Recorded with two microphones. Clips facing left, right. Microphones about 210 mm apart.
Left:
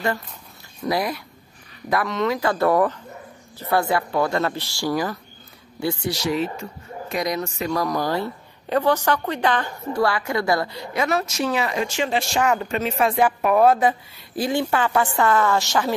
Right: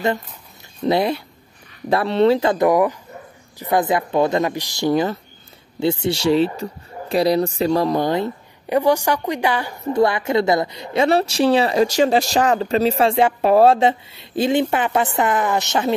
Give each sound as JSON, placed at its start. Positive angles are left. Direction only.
{"t": 0.8, "sound": "a woman's voice", "side_deg": -25}
{"t": 2.5, "sound": "a woman's voice", "side_deg": -15}
{"t": 9.9, "sound": "a woman's voice", "side_deg": -20}